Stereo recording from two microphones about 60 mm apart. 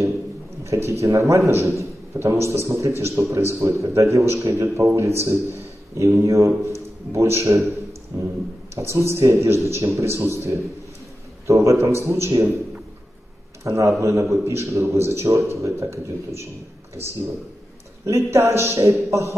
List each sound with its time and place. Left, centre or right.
0.7 s a man's voice: right
4.9 s a man's voice: right
11.7 s a man's voice: right
13.7 s a man's voice: right
18.0 s a man's voice: right